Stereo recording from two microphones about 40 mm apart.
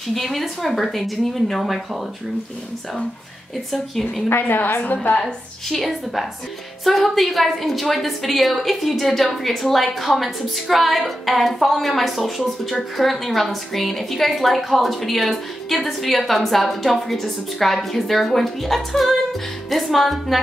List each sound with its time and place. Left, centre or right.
0.1 s a woman's voice: centre
4.4 s a woman's voice: left
5.7 s a woman's voice: centre